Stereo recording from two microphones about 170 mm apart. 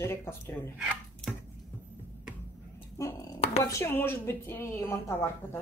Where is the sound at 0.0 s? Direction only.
15° left (ahead or behind).